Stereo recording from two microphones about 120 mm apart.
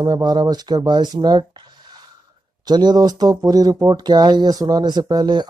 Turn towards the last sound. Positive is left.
turn(degrees=-35)  # may be behind; listen again after turning